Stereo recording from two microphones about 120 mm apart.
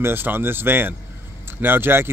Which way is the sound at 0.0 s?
15° right (ahead or behind).